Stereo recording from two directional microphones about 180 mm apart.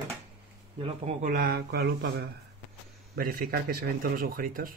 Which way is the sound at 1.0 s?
45° right (ahead or behind).